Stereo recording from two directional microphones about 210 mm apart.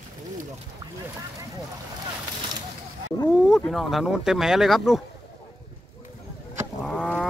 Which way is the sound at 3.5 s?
Centre (ahead or behind).